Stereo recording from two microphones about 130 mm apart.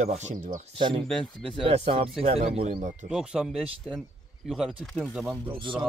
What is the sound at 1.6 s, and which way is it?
Speech, 45° right (ahead or behind).